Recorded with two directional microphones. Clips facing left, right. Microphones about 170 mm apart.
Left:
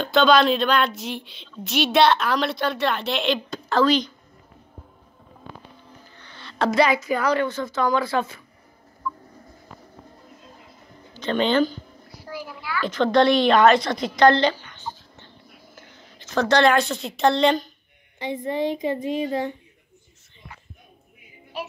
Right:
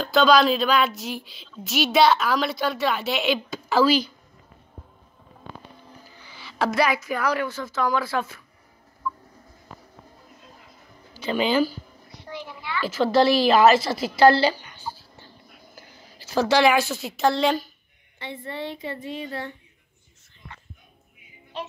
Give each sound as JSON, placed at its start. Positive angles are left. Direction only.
{"t": 0.0, "sound": "a woman's voice", "side_deg": 0}
{"t": 6.0, "sound": "speech", "side_deg": -5}
{"t": 9.0, "sound": "a sound", "side_deg": -5}
{"t": 11.1, "sound": "speech", "side_deg": -10}
{"t": 12.1, "sound": "a woman's voice", "side_deg": 5}
{"t": 18.2, "sound": "a woman's voice", "side_deg": 15}
{"t": 21.5, "sound": "music", "side_deg": 10}